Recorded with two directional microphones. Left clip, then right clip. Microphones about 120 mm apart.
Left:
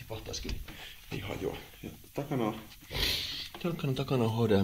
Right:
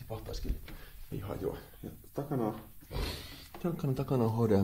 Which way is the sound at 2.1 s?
5° left (ahead or behind).